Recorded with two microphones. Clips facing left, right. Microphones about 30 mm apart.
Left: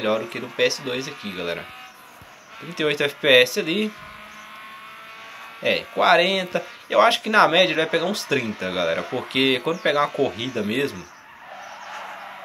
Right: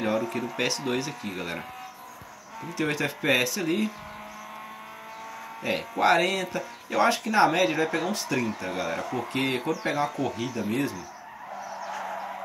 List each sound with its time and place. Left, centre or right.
0.0 s speech: left
0.7 s speech: left
1.2 s speech: left
2.6 s speech: left
5.6 s speech: left
7.1 s speech: left
10.2 s speech: left
10.7 s speech: left